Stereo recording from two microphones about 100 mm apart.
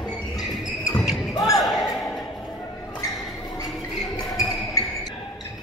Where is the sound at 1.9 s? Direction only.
5° left (ahead or behind).